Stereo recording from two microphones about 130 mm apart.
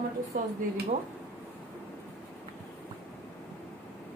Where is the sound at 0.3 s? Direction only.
90° right.